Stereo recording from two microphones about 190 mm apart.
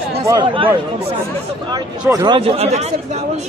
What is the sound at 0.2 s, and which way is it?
Speech, 20° right (ahead or behind).